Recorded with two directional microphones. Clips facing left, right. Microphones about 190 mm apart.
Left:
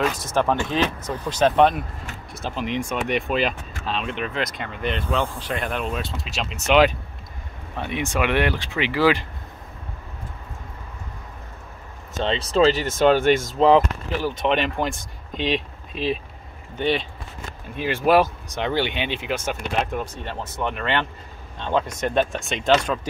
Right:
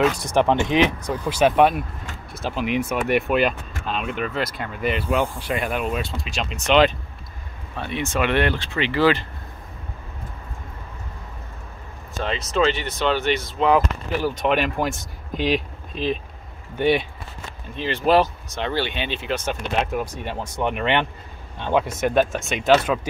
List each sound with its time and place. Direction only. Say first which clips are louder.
0.2 s speech: right 3 dB; 15° right (ahead or behind); by 9.2 s 10° left (ahead or behind)
12.2 s speech: left 3 dB; 30° left (ahead or behind)
14.1 s speech: right 1 dB; centre (ahead or behind)
16.7 s speech: right 3 dB; 10° right (ahead or behind)
17.7 s speech: even; 10° left (ahead or behind)
19.8 s speech: right 1 dB; 5° right (ahead or behind)